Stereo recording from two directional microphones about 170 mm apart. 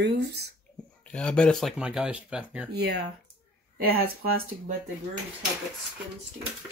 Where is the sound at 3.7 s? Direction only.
65° right (ahead or behind).